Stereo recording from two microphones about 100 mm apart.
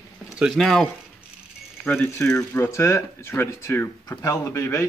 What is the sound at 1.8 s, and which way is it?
Speech, 25° left (ahead or behind).